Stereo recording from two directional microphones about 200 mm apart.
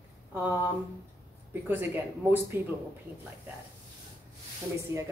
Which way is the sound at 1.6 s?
10° right (ahead or behind).